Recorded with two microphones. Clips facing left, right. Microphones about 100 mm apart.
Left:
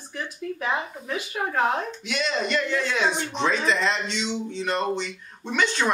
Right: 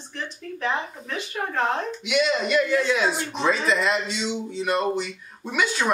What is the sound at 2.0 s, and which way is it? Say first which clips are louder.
Speech: right 4 dB; 5° right (ahead or behind).